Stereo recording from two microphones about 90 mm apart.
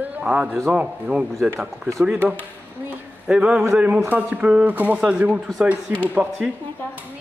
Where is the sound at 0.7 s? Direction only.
15° right (ahead or behind).